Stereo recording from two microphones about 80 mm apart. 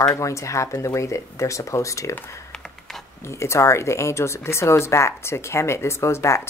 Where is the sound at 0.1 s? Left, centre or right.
Left.